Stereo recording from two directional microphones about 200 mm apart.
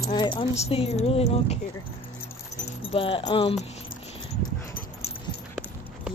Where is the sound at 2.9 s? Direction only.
25° left (ahead or behind).